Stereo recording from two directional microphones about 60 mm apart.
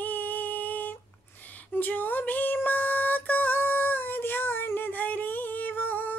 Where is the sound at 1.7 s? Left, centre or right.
Left.